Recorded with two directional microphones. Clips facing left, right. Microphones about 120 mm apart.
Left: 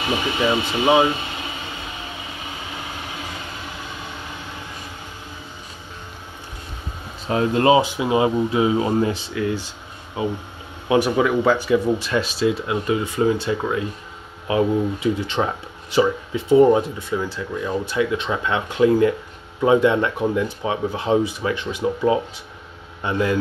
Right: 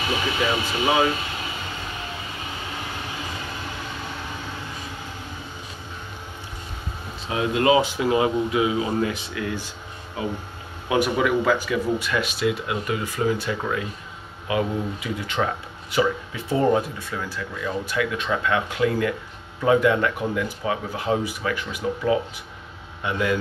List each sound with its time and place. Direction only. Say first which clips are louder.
0.4 s speech: left 5 dB; 25° left (ahead or behind)
7.2 s speech: left 3 dB; 35° left (ahead or behind)